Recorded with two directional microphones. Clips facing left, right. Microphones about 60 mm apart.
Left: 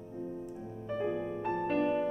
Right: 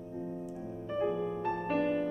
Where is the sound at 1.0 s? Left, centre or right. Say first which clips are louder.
Right 1 dB; centre.